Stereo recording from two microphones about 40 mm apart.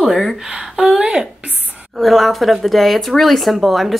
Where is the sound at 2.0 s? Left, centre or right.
Centre.